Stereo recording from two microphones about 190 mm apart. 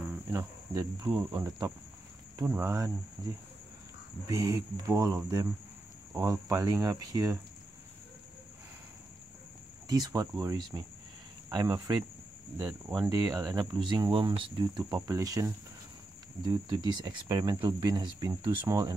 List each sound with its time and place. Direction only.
0.3 s speech: 15° right (ahead or behind)
1.1 s speech: 10° right (ahead or behind)
9.8 s speech: 20° right (ahead or behind)